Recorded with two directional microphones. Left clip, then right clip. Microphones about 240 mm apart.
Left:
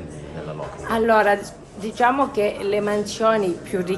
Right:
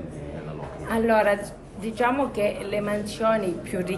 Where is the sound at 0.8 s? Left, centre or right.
Centre.